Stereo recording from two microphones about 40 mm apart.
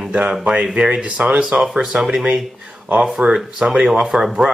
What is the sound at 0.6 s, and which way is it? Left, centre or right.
Speech, right.